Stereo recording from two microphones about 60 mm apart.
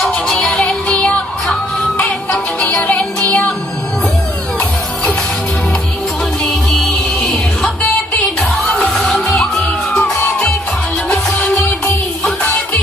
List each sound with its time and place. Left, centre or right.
0.1 s music: centre
7.2 s music: centre